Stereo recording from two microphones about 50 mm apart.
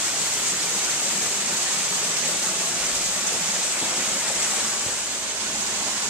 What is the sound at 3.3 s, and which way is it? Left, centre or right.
Waterfall, right.